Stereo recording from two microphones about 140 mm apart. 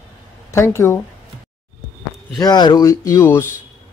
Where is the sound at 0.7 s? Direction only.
20° left (ahead or behind).